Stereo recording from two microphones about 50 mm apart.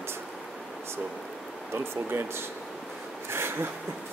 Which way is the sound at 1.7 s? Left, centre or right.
Right.